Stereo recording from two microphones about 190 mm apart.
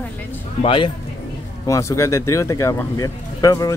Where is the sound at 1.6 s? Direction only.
15° left (ahead or behind).